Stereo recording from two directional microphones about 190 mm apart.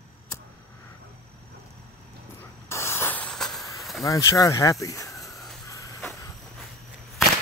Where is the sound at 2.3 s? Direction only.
15° left (ahead or behind).